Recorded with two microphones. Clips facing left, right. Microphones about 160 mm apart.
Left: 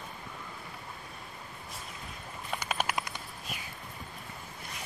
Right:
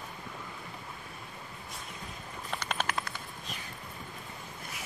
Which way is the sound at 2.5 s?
10° left (ahead or behind).